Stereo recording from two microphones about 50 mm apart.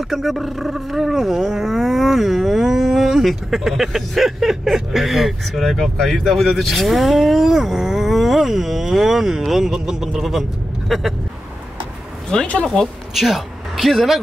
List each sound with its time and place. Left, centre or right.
0.0 s speech: centre
12.3 s speech: left
13.1 s speech: centre